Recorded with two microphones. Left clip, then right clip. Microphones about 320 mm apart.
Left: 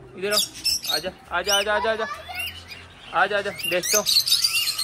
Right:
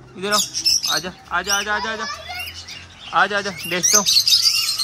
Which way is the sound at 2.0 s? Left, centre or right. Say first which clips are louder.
Right 3 dB; right.